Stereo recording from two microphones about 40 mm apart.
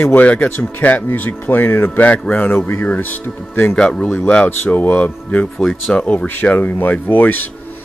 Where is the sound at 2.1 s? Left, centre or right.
Left.